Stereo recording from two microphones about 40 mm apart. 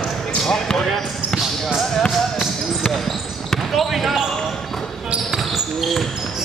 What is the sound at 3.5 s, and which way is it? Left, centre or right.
Basketball bounce, centre.